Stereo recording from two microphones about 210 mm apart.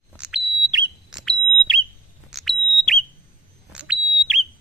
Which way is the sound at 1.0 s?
Centre (ahead or behind).